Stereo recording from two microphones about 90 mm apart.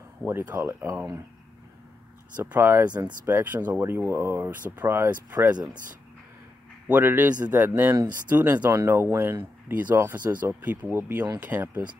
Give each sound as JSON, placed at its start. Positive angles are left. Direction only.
{"t": 0.2, "sound": "speech", "side_deg": -25}
{"t": 2.3, "sound": "speech", "side_deg": -25}
{"t": 6.9, "sound": "speech", "side_deg": -20}